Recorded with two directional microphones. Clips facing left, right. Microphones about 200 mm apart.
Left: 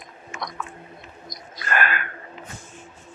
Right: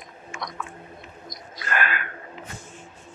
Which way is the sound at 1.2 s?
45° left (ahead or behind).